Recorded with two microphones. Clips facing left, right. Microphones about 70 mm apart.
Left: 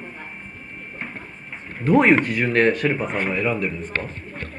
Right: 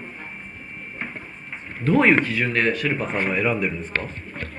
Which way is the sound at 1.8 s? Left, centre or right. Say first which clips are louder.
Left 2 dB; left.